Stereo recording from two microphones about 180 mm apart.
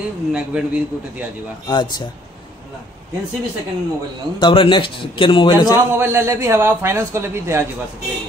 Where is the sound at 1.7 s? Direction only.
25° left (ahead or behind).